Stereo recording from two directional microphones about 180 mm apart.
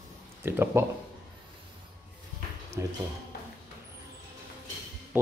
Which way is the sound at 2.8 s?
15° right (ahead or behind).